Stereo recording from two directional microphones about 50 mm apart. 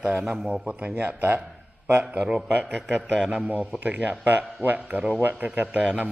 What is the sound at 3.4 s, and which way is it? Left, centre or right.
Speech, right.